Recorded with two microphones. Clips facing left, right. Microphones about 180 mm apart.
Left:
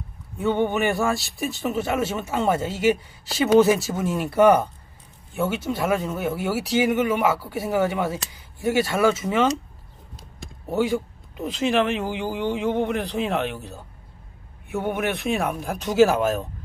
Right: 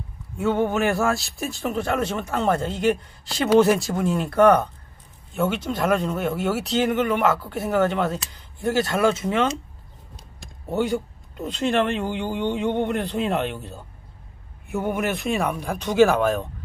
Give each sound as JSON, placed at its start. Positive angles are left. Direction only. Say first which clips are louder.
{"t": 0.4, "sound": "speech", "louder": "even", "side_deg": 0}
{"t": 10.7, "sound": "speech", "louder": "left 1 dB", "side_deg": 0}